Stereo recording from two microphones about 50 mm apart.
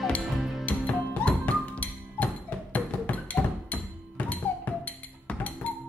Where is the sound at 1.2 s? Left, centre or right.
Left.